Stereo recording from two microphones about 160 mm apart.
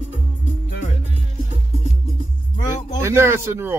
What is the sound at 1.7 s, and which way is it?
Music, 45° right (ahead or behind).